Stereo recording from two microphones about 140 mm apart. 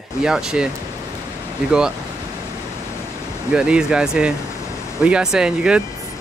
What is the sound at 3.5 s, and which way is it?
Speech, 5° right (ahead or behind).